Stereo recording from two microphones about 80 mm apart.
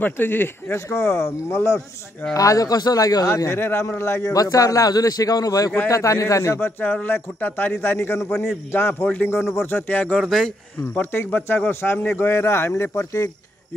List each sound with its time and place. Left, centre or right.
0.0 s a man's voice: left
2.3 s a man's voice: left
3.3 s speech: left
4.3 s a man's voice: left
6.6 s a man's voice: centre
10.1 s a man's voice: centre
11.0 s a man's voice: left